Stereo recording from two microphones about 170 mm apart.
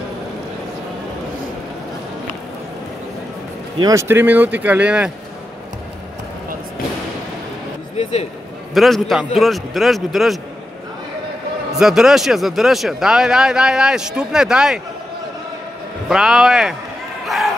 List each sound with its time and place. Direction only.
3.8 s speech: 15° right (ahead or behind)
8.0 s speech: 40° left (ahead or behind)
8.7 s speech: centre (ahead or behind)
11.7 s speech: 5° right (ahead or behind)
16.1 s speech: 5° right (ahead or behind)